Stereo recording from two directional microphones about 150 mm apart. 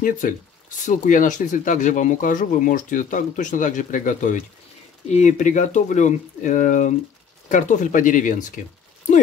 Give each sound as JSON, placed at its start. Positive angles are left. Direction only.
{"t": 0.2, "sound": "speech", "side_deg": 65}